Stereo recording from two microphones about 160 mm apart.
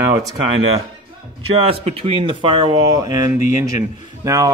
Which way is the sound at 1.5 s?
35° right (ahead or behind).